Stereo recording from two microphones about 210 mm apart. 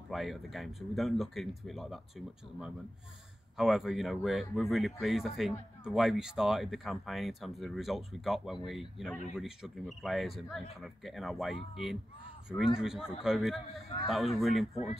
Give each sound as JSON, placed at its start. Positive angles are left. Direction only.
{"t": 0.1, "sound": "speech", "side_deg": 0}